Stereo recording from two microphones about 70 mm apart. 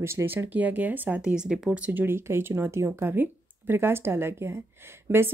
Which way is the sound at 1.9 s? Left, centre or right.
Right.